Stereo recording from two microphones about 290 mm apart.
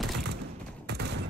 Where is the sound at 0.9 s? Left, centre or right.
Right.